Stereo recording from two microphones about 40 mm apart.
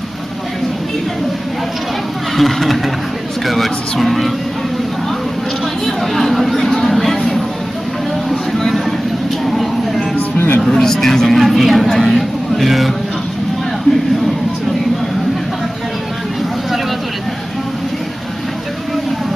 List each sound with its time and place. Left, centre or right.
2.3 s speech: centre
5.9 s chatter: centre
9.5 s vehicle: centre
10.1 s music: left
10.6 s speech: centre